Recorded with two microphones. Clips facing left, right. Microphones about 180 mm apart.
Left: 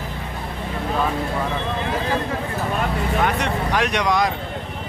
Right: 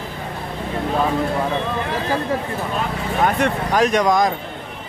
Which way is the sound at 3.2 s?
45° right (ahead or behind).